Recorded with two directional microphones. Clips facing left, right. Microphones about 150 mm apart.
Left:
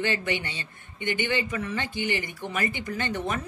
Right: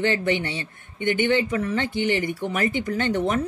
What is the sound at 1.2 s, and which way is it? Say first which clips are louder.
Speech: right 7 dB; 55° right (ahead or behind).